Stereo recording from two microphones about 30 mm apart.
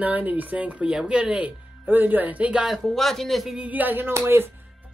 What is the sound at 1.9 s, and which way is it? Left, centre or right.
Speech, right.